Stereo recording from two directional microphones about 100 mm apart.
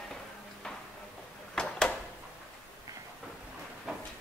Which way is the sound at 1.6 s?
5° left (ahead or behind).